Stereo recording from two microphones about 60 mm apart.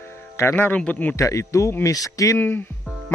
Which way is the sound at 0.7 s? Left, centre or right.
Left.